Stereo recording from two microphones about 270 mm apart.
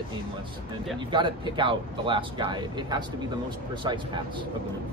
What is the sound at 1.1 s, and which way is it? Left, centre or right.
Speech, centre.